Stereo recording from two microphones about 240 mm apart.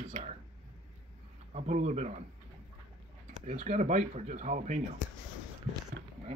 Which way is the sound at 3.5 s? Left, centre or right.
Right.